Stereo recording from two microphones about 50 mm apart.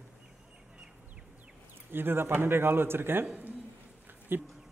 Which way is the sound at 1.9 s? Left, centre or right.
Right.